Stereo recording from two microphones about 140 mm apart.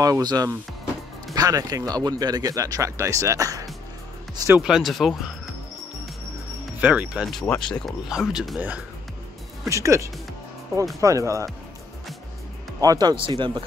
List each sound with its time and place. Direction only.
0.0 s speech: 25° right (ahead or behind)
4.5 s speech: 5° right (ahead or behind)
6.8 s speech: 10° right (ahead or behind)
7.3 s speech: 5° left (ahead or behind)
8.1 s speech: 5° right (ahead or behind)
9.7 s speech: 20° right (ahead or behind)
12.8 s speech: 30° right (ahead or behind)